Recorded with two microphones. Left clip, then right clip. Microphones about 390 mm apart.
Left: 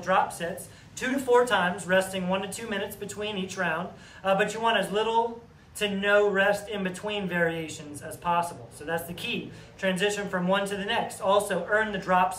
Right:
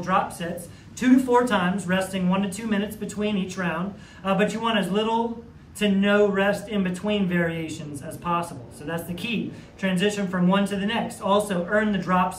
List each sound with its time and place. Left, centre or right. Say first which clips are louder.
0.0 s speech: right 1 dB; centre